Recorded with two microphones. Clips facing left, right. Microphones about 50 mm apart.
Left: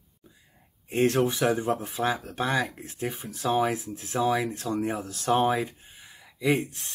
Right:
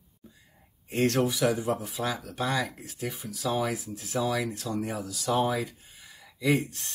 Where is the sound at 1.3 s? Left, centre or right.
Left.